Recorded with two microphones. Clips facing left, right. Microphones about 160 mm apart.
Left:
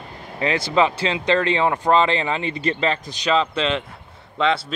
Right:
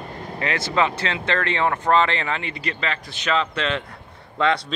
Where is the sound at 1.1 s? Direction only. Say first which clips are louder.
Left 4 dB; 15° left (ahead or behind).